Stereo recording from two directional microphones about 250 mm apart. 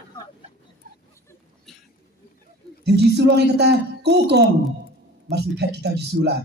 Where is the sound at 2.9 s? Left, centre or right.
Right.